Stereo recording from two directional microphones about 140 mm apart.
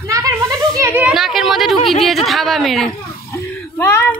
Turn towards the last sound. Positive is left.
turn(degrees=20)  # may be behind; listen again after turning